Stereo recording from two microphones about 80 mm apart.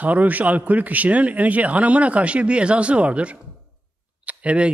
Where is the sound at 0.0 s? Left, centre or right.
Centre.